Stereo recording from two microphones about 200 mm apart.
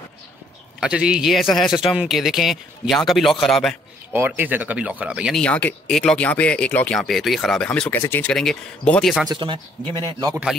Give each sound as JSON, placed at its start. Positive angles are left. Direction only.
{"t": 0.7, "sound": "speech", "side_deg": -5}
{"t": 5.4, "sound": "speech", "side_deg": 5}
{"t": 9.3, "sound": "speech", "side_deg": -20}